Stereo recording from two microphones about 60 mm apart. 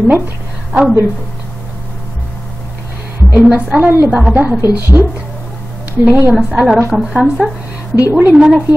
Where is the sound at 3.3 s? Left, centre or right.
Right.